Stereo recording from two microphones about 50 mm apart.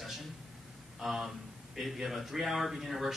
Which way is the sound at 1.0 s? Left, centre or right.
Centre.